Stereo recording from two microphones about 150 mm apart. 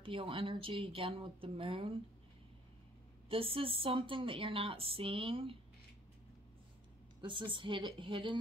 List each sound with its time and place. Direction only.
0.0 s a woman's voice: 35° right (ahead or behind)
3.3 s a woman's voice: 40° right (ahead or behind)
7.2 s a woman's voice: 35° right (ahead or behind)